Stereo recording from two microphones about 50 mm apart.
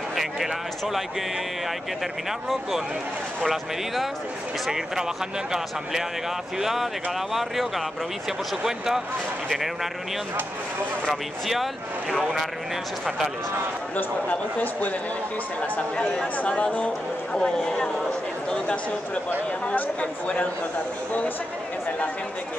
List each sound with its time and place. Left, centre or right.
0.1 s speech: centre
3.4 s speech: centre
6.6 s speech: centre
11.4 s speech: centre
13.9 s speech: left
16.3 s speech: left
19.6 s speech: left